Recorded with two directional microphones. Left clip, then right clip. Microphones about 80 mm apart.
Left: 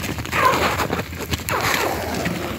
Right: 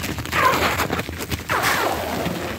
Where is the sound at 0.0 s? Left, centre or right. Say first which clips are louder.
Left 1 dB; left.